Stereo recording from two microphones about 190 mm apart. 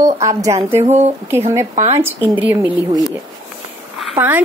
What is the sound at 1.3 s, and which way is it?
Speech, 15° right (ahead or behind).